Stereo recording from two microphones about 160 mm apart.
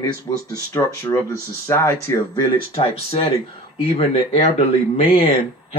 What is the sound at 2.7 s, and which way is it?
Speech, 40° left (ahead or behind).